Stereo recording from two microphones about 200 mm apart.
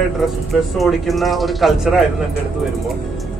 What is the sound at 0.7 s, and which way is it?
Speech, centre (ahead or behind).